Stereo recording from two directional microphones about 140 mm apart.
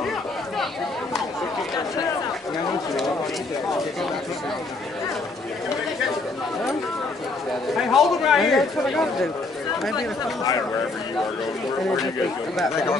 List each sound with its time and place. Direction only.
7.7 s speech: centre (ahead or behind)
9.9 s speech: 25° left (ahead or behind)
12.7 s speech: 20° left (ahead or behind)